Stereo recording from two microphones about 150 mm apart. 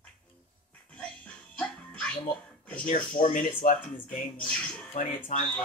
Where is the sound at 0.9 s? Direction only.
10° left (ahead or behind).